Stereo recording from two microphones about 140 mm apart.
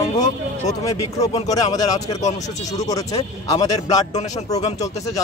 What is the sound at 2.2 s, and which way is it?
Speech, 55° left (ahead or behind).